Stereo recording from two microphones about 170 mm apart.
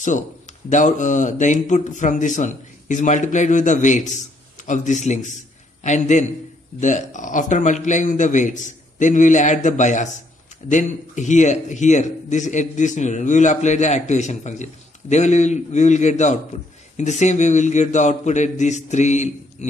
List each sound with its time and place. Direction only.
0.7 s a man's voice: 45° left (ahead or behind)